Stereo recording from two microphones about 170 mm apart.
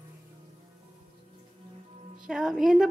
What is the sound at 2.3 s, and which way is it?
Speech, 5° right (ahead or behind).